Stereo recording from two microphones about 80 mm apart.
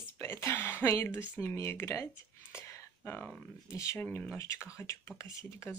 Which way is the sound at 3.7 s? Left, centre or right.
Left.